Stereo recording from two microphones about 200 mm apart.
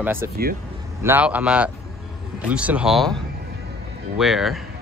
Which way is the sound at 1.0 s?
10° right (ahead or behind).